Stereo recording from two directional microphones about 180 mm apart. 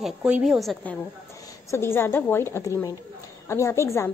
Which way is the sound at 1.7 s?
15° left (ahead or behind).